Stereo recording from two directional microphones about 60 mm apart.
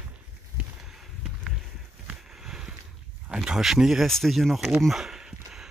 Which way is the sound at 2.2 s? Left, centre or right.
Centre.